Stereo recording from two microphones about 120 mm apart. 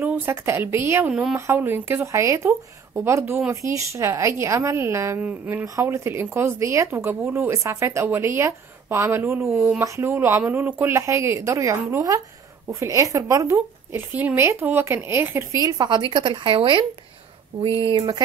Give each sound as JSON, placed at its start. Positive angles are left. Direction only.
{"t": 0.0, "sound": "speech", "side_deg": -15}
{"t": 9.5, "sound": "speech", "side_deg": -5}
{"t": 9.8, "sound": "speech", "side_deg": -20}
{"t": 15.6, "sound": "a woman's voice", "side_deg": -35}